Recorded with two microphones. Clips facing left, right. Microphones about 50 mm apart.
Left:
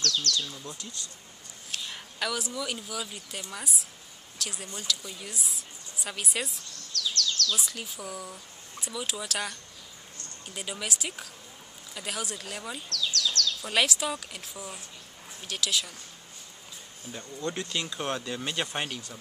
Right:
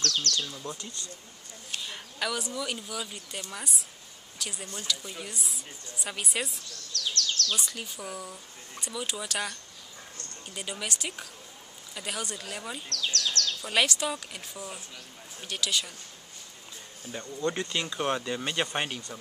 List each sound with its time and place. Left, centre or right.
0.0 s speech: right
0.7 s a woman's voice: centre
7.0 s bird: right
7.5 s a woman's voice: centre
12.9 s speech: right
13.6 s a woman's voice: centre
17.1 s speech: centre